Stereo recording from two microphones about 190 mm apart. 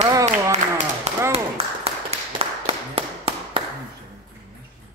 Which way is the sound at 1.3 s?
30° right (ahead or behind).